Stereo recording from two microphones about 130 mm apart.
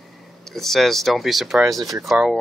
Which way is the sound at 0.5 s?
Centre (ahead or behind).